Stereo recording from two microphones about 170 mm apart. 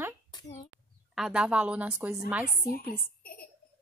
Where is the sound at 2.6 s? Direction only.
60° left (ahead or behind).